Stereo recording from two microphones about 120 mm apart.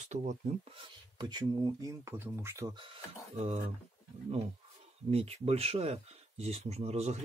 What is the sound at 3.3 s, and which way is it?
Speech, 60° right (ahead or behind).